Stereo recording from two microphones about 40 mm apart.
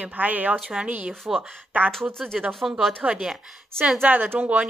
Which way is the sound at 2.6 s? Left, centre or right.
Right.